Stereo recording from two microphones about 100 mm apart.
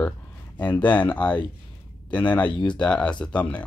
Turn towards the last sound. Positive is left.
turn(degrees=15)  # may be behind; listen again after turning